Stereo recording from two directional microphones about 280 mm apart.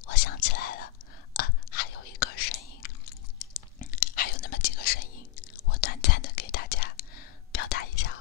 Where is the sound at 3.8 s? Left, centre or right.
Left.